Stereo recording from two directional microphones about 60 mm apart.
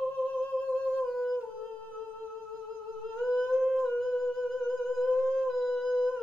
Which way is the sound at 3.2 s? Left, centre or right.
Centre.